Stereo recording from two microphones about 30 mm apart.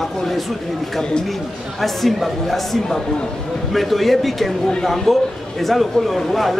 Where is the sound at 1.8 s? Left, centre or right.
Centre.